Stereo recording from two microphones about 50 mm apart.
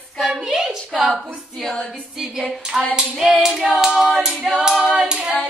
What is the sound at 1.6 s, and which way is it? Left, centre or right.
Music, centre.